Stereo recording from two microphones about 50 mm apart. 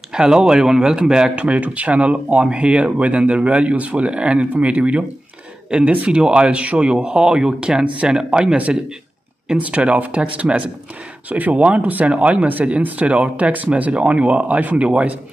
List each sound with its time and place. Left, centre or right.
0.1 s speech: centre